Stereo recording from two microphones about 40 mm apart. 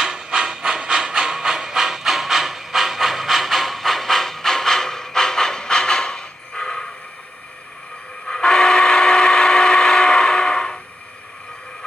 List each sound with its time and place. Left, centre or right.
0.0 s hiss: centre
8.3 s train: centre